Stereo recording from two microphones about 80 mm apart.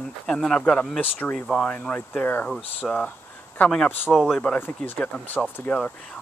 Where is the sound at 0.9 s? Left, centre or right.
Left.